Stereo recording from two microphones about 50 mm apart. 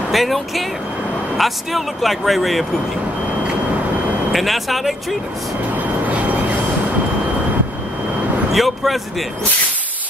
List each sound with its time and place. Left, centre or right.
0.1 s speech: centre
4.3 s speech: centre
5.8 s vehicle: right
8.5 s speech: centre